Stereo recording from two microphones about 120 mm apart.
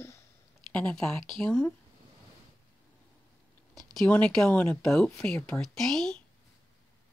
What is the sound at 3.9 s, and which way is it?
Speech, 10° left (ahead or behind).